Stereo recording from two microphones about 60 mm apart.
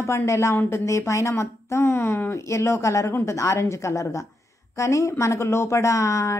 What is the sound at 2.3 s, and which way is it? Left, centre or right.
Speech, left.